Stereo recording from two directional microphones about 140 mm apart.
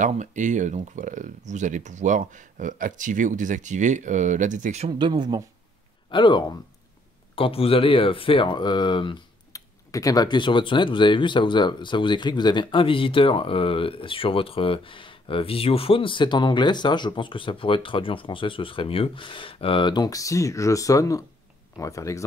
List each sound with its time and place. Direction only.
0.0 s speech: 60° right (ahead or behind)
4.8 s speech: 35° right (ahead or behind)
6.0 s speech: 35° left (ahead or behind)
9.5 s speech: 25° left (ahead or behind)